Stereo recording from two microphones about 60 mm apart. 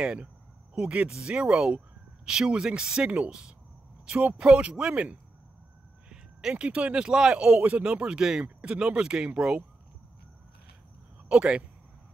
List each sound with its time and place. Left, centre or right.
0.0 s speech: centre
11.2 s speech: centre